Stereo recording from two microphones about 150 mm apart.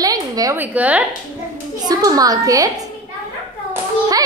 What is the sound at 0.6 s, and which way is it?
Speech, 10° right (ahead or behind).